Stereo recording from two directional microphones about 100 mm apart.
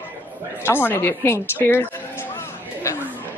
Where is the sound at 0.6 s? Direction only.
20° left (ahead or behind).